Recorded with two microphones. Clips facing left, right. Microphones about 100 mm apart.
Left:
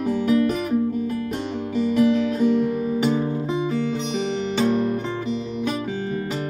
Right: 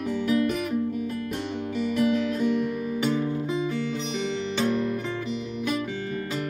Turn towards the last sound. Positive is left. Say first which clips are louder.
# left 4 dB
turn(degrees=35)  # may be behind; listen again after turning